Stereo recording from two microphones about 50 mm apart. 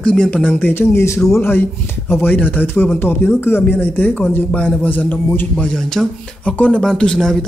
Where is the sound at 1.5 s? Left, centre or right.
Left.